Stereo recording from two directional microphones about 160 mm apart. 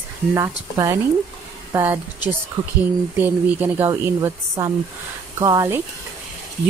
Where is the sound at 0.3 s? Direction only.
20° right (ahead or behind).